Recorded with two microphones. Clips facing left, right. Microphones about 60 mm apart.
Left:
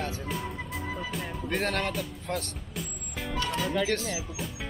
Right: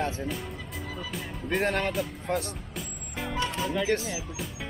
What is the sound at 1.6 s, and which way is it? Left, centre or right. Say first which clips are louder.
Speech: right 3 dB; centre.